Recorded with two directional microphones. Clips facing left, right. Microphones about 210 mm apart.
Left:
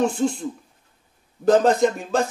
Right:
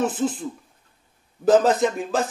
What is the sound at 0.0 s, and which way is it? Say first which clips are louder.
A man's voice: left 2 dB; 5° right (ahead or behind).